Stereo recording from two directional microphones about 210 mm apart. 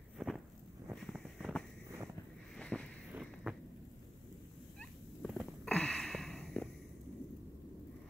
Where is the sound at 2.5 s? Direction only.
5° left (ahead or behind).